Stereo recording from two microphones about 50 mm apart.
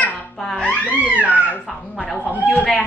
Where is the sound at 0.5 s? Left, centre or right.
Centre.